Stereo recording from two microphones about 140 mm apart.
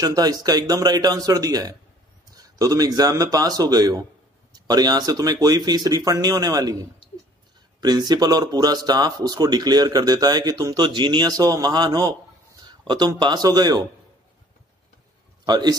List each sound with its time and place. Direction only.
0.0 s speech: 25° right (ahead or behind)
15.4 s a man's voice: 30° right (ahead or behind)